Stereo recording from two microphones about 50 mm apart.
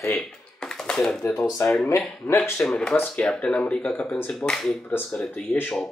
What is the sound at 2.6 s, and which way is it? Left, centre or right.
Speech, centre.